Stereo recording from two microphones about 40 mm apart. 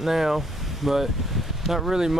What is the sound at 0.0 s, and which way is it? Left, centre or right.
Speech, centre.